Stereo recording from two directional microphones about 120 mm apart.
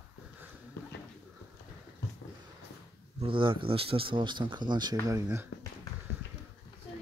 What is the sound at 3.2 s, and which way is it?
Speech, 45° right (ahead or behind).